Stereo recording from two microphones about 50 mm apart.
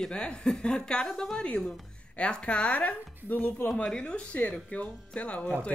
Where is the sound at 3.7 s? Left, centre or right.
Left.